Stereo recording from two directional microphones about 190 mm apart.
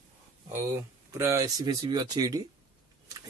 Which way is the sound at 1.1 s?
15° right (ahead or behind).